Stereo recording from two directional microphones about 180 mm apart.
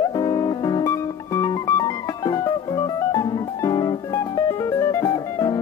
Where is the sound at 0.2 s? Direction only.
20° left (ahead or behind).